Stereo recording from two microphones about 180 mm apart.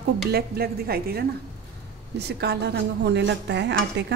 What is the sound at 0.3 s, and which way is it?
A woman's voice, 60° right (ahead or behind).